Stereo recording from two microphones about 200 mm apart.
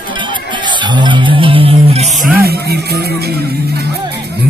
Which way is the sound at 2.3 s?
50° right (ahead or behind).